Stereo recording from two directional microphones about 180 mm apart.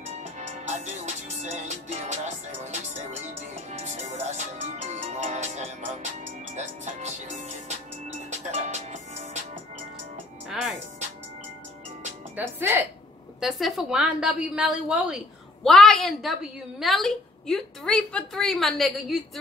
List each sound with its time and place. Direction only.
0.0 s music: 40° right (ahead or behind)
3.7 s music: 40° right (ahead or behind)
12.4 s speech: 10° right (ahead or behind)
13.4 s a woman's voice: centre (ahead or behind)